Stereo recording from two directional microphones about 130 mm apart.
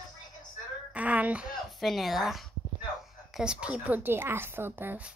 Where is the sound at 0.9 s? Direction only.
10° right (ahead or behind).